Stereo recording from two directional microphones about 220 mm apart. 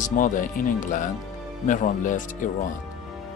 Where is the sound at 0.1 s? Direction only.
35° left (ahead or behind).